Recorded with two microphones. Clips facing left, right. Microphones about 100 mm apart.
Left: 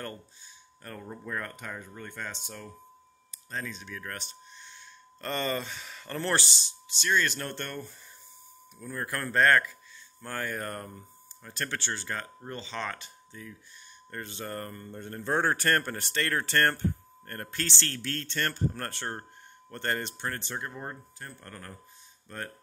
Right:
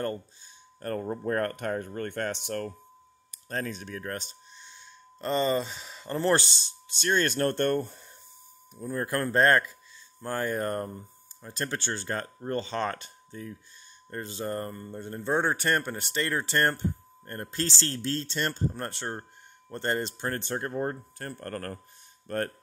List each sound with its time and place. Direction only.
0.8 s speech: 50° right (ahead or behind); by 2.7 s 70° right (ahead or behind)
3.4 s speech: 55° right (ahead or behind)
4.0 s speech: 30° right (ahead or behind)
6.3 s speech: 45° right (ahead or behind)
8.7 s speech: 30° right (ahead or behind)
14.1 s speech: 25° right (ahead or behind); by 21.7 s 55° right (ahead or behind)